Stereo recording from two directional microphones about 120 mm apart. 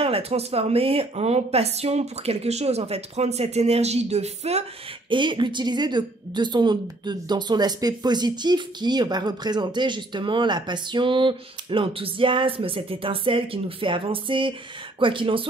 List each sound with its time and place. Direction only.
0.0 s speech: 55° right (ahead or behind)
5.1 s a woman's voice: 40° right (ahead or behind)